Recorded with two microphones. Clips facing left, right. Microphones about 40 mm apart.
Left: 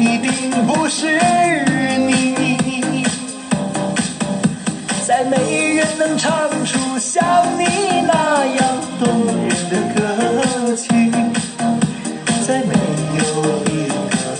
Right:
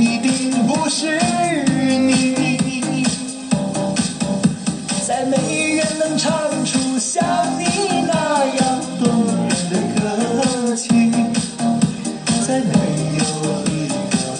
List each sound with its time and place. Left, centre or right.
0.0 s music: left
5.1 s music: left